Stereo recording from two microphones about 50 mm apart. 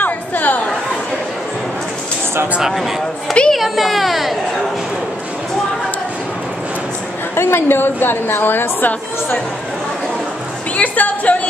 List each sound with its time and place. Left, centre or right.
0.0 s chatter: left
2.6 s a man's voice: centre
3.5 s baby cry: centre
7.3 s a woman's voice: left
10.8 s speech: left